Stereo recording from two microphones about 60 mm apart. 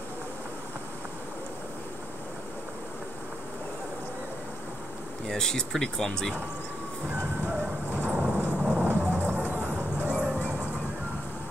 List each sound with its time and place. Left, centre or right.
5.3 s speech: centre
7.9 s thunder: right
8.5 s vehicle: right